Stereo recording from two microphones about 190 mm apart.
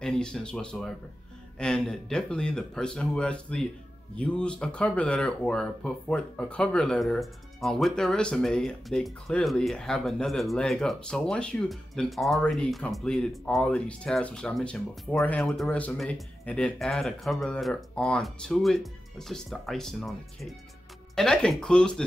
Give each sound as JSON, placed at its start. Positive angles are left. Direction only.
{"t": 0.0, "sound": "speech", "side_deg": 5}